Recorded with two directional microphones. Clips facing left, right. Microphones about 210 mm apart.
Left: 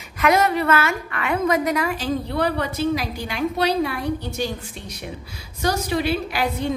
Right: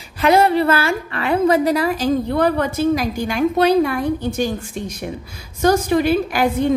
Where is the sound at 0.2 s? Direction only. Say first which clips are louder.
Right 4 dB; 30° right (ahead or behind).